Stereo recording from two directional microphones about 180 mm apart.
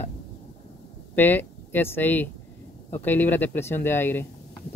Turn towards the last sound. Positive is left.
turn(degrees=10)  # may be behind; listen again after turning